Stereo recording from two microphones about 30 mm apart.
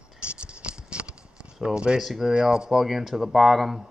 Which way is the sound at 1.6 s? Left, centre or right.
Right.